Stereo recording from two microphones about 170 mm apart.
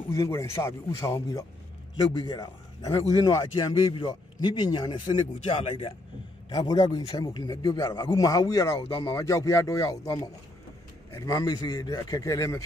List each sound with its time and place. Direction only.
0.1 s a man's voice: 15° left (ahead or behind)